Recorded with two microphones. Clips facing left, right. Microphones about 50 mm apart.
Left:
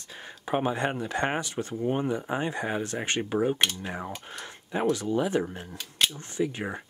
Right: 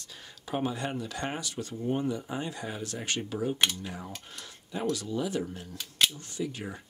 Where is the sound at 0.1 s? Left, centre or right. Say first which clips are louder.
Left 6 dB; left.